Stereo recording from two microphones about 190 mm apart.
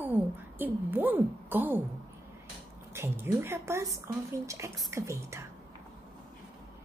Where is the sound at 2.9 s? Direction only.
15° right (ahead or behind).